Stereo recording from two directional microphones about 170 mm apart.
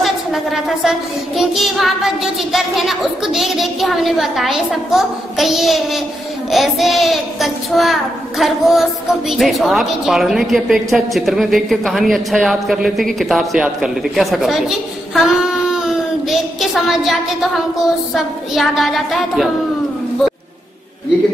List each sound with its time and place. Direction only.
0.0 s a woman's voice: centre (ahead or behind)